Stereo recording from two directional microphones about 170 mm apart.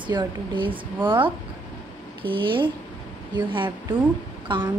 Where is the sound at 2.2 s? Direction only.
30° right (ahead or behind).